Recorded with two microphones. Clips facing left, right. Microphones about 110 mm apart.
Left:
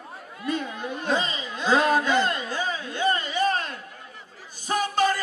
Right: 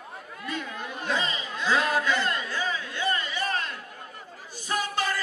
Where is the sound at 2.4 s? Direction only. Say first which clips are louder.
Left 2 dB; 35° left (ahead or behind).